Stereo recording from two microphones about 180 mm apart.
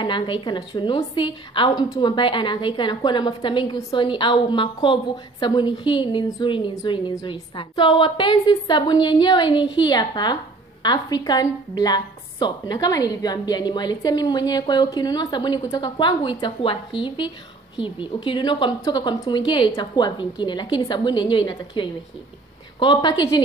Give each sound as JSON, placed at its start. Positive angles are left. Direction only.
{"t": 0.0, "sound": "a woman's voice", "side_deg": 25}
{"t": 17.7, "sound": "a woman's voice", "side_deg": 30}